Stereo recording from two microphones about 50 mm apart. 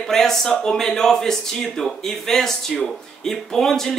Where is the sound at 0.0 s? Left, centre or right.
Centre.